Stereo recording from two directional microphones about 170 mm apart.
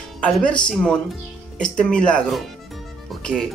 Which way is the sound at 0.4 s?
5° left (ahead or behind).